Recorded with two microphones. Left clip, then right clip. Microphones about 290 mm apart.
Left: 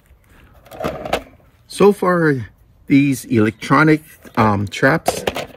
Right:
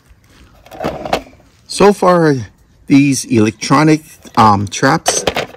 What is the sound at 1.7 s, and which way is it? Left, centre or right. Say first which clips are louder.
Speech: right 4 dB; centre.